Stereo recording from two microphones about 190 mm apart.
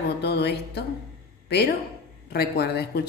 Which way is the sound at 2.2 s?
55° left (ahead or behind).